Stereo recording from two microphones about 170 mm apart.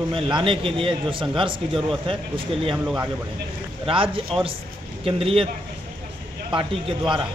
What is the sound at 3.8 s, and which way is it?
A man's voice, 30° right (ahead or behind).